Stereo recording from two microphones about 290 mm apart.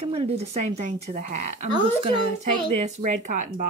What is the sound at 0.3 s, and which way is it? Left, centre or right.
Speech, right.